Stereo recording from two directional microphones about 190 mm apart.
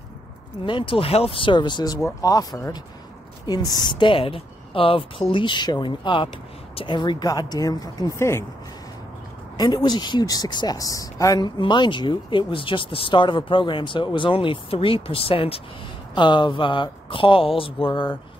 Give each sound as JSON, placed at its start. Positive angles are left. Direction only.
{"t": 0.7, "sound": "speech", "side_deg": 25}
{"t": 9.6, "sound": "speech", "side_deg": 20}